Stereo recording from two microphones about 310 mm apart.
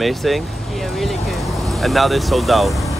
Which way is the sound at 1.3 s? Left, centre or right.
Centre.